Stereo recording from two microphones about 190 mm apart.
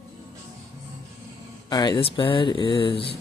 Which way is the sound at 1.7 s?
20° left (ahead or behind).